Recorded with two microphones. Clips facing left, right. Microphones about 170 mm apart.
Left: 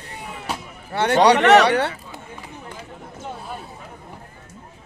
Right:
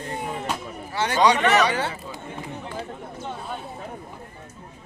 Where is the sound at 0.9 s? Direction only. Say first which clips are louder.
Left 4 dB; 60° left (ahead or behind).